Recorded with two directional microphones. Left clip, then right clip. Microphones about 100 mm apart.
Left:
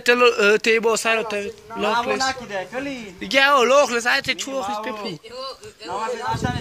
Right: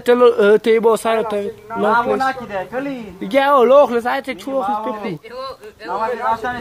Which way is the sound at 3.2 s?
45° right (ahead or behind).